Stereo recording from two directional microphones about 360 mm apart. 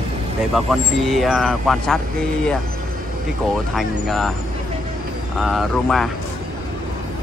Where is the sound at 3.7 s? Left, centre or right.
Centre.